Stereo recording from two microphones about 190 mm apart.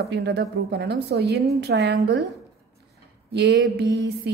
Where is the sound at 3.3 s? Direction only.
65° right (ahead or behind).